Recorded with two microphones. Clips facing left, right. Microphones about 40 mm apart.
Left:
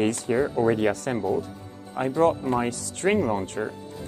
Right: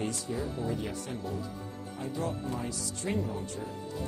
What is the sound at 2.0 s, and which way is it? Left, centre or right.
Speech, left.